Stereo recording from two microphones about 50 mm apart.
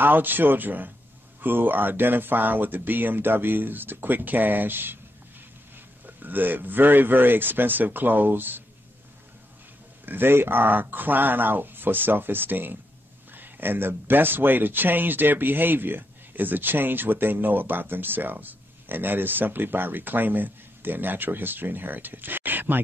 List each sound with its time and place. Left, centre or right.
0.0 s speech: right
6.0 s speech: right
10.0 s speech: right